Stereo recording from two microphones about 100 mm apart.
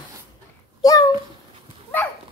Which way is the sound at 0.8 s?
35° left (ahead or behind).